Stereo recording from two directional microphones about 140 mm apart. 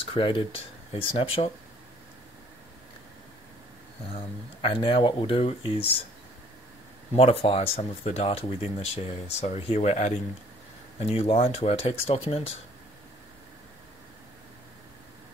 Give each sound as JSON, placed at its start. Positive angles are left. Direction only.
{"t": 0.1, "sound": "speech", "side_deg": 40}
{"t": 4.1, "sound": "speech", "side_deg": 40}
{"t": 7.2, "sound": "speech", "side_deg": 40}